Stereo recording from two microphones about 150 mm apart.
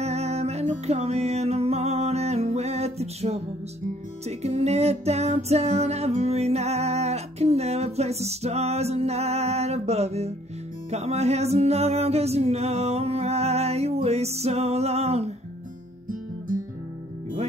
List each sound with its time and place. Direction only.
0.0 s music: 45° right (ahead or behind)